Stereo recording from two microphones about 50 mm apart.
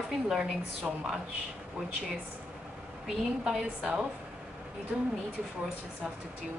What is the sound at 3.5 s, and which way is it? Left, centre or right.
Speech, centre.